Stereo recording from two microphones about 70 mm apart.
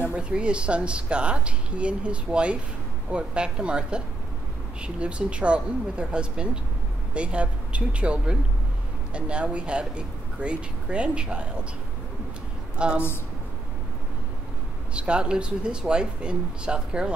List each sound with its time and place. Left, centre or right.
0.1 s a woman's voice: centre
12.7 s a woman's voice: centre
15.0 s a woman's voice: centre